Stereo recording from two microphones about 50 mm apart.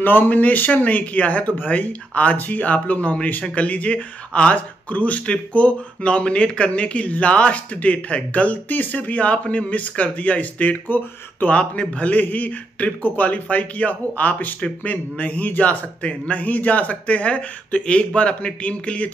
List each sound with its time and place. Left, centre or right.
0.0 s speech: left
11.4 s speech: left